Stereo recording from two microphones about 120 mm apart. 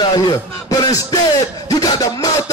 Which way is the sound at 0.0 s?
40° left (ahead or behind).